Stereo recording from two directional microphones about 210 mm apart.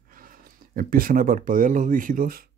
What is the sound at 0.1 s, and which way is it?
Speech, 40° right (ahead or behind).